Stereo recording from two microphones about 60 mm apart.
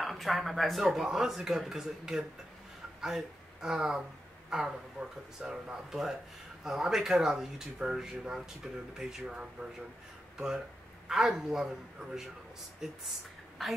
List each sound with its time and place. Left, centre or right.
0.0 s speech: centre
5.0 s speech: right
5.4 s speech: centre
13.6 s speech: centre